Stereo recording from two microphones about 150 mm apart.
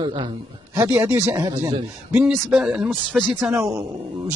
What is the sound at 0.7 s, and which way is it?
Speech, 10° right (ahead or behind).